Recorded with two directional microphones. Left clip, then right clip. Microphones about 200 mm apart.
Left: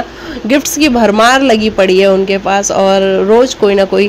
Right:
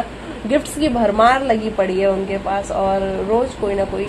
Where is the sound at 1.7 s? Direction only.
45° left (ahead or behind).